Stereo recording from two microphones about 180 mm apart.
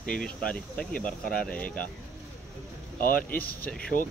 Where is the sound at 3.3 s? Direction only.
10° left (ahead or behind).